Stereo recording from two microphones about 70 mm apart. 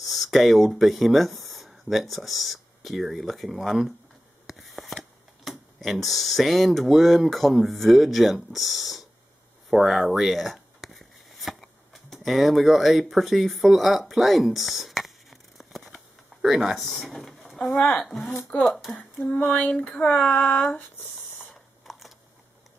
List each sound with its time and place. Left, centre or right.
0.0 s speech: centre
9.7 s a sound: centre
17.7 s speech: centre
18.0 s speech: centre
19.5 s speech: centre
21.8 s a sound: centre